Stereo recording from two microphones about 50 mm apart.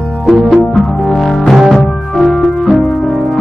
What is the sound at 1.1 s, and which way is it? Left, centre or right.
Music, centre.